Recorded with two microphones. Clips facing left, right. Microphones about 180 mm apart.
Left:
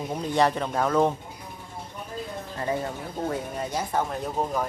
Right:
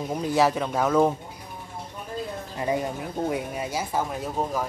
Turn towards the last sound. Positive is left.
turn(degrees=-5)  # may be behind; listen again after turning